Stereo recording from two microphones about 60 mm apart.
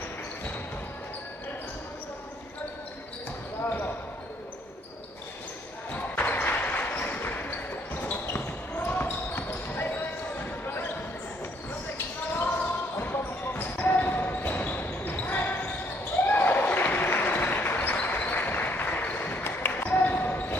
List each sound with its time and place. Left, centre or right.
3.6 s basketball bounce: left
5.9 s basketball bounce: left
13.0 s basketball bounce: left
16.3 s applause: left
19.8 s basketball bounce: left